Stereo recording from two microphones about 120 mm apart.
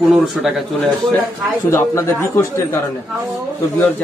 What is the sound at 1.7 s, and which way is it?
A man's voice, 20° left (ahead or behind).